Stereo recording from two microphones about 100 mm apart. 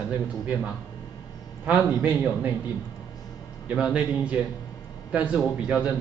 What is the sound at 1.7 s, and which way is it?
Speech, 20° right (ahead or behind).